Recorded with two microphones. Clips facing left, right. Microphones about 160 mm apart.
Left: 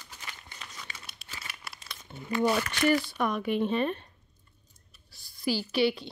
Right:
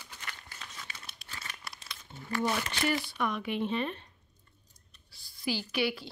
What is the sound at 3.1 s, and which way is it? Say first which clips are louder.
A woman's voice: left 4 dB; 45° left (ahead or behind).